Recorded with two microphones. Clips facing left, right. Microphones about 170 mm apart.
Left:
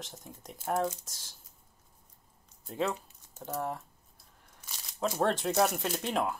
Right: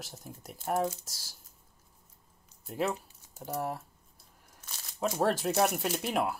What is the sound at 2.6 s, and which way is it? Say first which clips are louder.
Speech: even; 5° right (ahead or behind).